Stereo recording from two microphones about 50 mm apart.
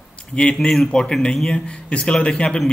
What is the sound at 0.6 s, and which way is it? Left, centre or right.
A man's voice, centre.